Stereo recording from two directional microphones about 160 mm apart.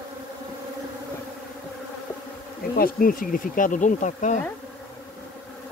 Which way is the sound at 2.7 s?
65° left (ahead or behind).